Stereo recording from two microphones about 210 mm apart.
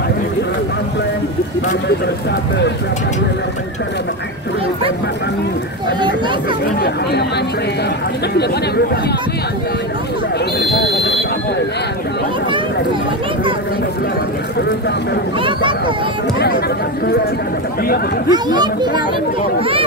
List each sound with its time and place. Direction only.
10.9 s buzzer: centre (ahead or behind)
16.3 s speech: 50° left (ahead or behind)
18.3 s a child's voice: 20° right (ahead or behind)